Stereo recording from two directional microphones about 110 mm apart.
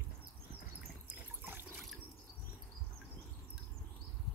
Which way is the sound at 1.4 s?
20° right (ahead or behind).